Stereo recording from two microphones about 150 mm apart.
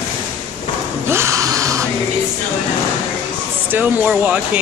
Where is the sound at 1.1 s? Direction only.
20° right (ahead or behind).